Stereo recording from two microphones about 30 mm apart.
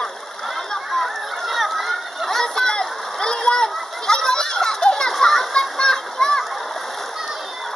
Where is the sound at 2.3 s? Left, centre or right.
Centre.